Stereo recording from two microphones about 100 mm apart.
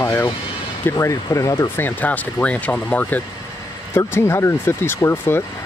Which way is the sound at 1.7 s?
15° left (ahead or behind).